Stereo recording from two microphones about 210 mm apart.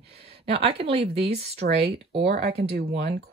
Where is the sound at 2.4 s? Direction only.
50° right (ahead or behind).